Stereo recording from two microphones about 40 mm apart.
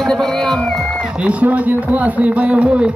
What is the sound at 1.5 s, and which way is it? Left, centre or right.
A man's voice, right.